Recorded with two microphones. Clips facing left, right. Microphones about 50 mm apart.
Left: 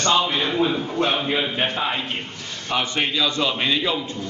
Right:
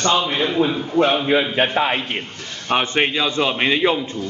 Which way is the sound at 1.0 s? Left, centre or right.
Right.